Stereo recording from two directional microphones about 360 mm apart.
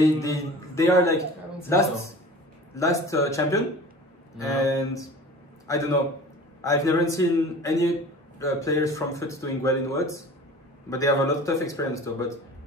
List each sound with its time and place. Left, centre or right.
0.0 s a man's voice: centre
6.6 s a man's voice: centre